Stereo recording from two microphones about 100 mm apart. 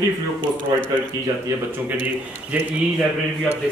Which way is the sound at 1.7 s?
20° right (ahead or behind).